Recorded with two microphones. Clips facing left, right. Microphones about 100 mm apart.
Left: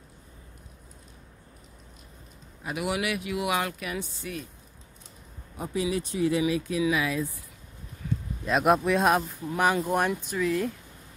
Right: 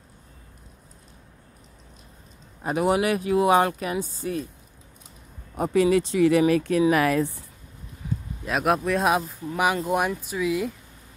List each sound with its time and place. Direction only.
2.6 s speech: 40° right (ahead or behind)
5.6 s speech: 70° right (ahead or behind)
6.4 s speech: 60° right (ahead or behind)
8.5 s speech: centre (ahead or behind)